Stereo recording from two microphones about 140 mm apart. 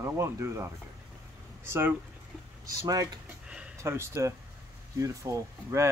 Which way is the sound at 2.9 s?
25° right (ahead or behind).